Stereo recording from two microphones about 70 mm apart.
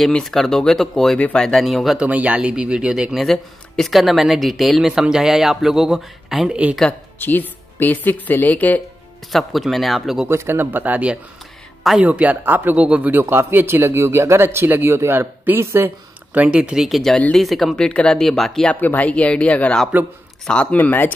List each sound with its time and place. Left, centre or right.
0.2 s speech: centre
2.0 s speech: right
3.2 s speech: centre
6.9 s speech: left
9.3 s speech: centre
10.2 s speech: right
13.2 s speech: right
16.3 s speech: centre
17.7 s speech: centre
18.7 s speech: left